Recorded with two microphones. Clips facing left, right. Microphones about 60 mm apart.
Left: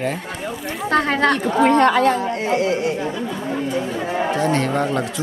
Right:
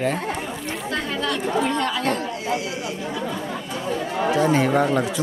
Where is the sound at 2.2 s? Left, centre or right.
Left.